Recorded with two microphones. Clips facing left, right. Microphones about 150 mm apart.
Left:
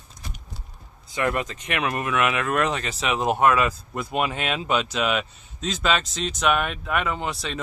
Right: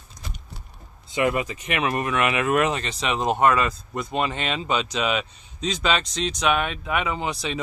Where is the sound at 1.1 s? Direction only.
15° right (ahead or behind).